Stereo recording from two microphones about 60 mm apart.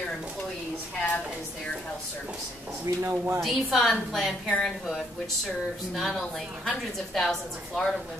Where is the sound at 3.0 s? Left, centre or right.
Right.